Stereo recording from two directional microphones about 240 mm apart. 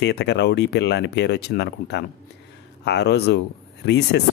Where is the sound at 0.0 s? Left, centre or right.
Left.